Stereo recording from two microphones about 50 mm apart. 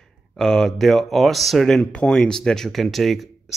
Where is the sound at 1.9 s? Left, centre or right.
Left.